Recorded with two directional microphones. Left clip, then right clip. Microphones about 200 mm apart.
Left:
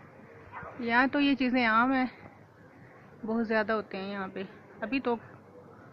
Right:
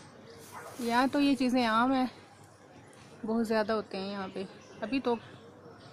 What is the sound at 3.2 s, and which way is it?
A woman's voice, 5° right (ahead or behind).